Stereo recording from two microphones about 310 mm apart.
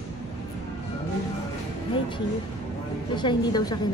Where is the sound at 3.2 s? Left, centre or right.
Centre.